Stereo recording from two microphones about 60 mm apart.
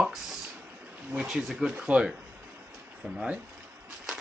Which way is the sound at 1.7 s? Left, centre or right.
Right.